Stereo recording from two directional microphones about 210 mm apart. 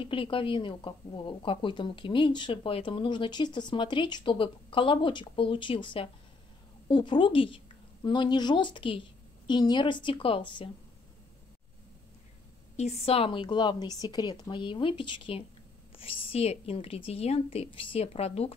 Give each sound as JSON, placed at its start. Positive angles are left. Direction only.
{"t": 0.0, "sound": "a woman's voice", "side_deg": 25}
{"t": 12.7, "sound": "a woman's voice", "side_deg": 30}